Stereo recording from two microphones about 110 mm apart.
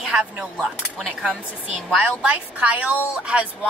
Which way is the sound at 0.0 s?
5° right (ahead or behind).